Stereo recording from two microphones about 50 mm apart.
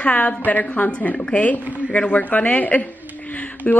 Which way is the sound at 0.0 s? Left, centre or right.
Left.